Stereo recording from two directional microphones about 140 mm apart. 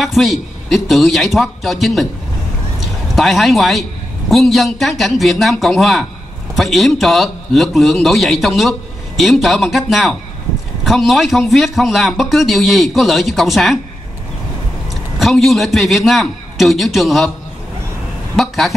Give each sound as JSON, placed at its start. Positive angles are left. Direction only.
{"t": 0.0, "sound": "a man's voice", "side_deg": 0}
{"t": 3.2, "sound": "a man's voice", "side_deg": 0}
{"t": 15.1, "sound": "a man's voice", "side_deg": 0}
{"t": 18.3, "sound": "a man's voice", "side_deg": 0}